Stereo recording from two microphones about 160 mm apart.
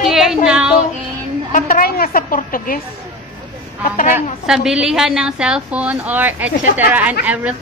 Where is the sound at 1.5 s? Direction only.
60° left (ahead or behind).